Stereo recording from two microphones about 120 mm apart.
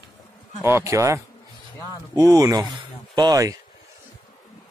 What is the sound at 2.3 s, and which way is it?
Speech, 30° right (ahead or behind).